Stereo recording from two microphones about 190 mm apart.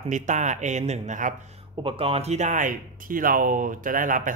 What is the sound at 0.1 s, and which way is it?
Speech, 40° right (ahead or behind).